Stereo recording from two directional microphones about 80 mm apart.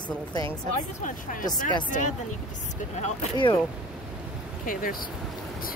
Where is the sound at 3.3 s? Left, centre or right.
Left.